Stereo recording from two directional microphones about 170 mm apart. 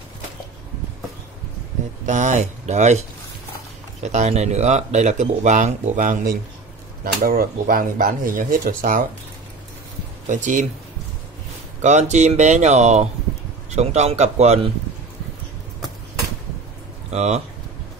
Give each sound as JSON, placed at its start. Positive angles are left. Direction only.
{"t": 2.0, "sound": "speech", "side_deg": -45}
{"t": 4.0, "sound": "speech", "side_deg": -45}
{"t": 10.2, "sound": "speech", "side_deg": -45}
{"t": 11.8, "sound": "speech", "side_deg": -45}
{"t": 17.1, "sound": "speech", "side_deg": -40}